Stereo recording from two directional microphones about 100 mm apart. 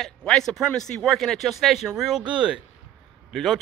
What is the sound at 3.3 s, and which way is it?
Speech, centre (ahead or behind).